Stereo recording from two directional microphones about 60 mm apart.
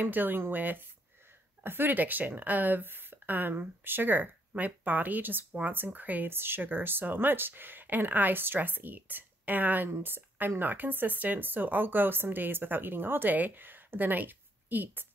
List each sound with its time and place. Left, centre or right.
0.0 s speech: right
9.8 s speech: right